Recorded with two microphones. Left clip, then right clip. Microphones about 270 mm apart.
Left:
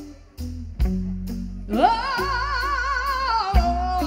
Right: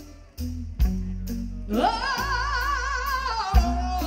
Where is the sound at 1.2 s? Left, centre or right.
Right.